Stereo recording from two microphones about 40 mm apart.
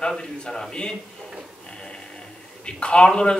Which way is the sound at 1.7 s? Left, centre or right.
Left.